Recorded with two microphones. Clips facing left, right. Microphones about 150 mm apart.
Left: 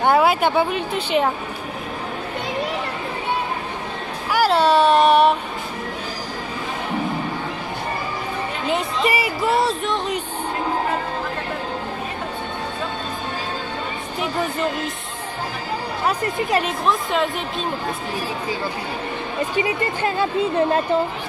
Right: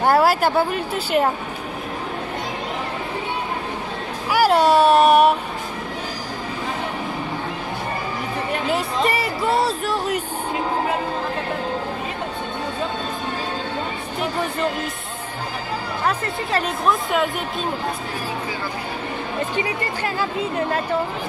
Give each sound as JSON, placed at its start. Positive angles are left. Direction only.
{"t": 0.0, "sound": "speech", "side_deg": 0}
{"t": 4.3, "sound": "speech", "side_deg": -10}
{"t": 8.6, "sound": "speech", "side_deg": 0}
{"t": 16.1, "sound": "speech", "side_deg": 10}
{"t": 16.8, "sound": "speech", "side_deg": 0}
{"t": 19.6, "sound": "speech", "side_deg": 25}